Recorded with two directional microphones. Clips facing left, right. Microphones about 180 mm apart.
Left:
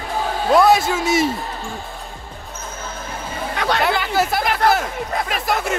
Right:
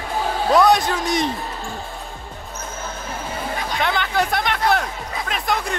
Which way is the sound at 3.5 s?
75° left (ahead or behind).